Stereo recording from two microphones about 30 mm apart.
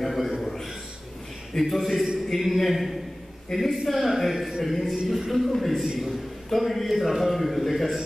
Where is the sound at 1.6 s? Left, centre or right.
Centre.